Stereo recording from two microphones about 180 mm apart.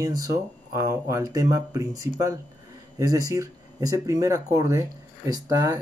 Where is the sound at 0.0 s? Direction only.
20° right (ahead or behind).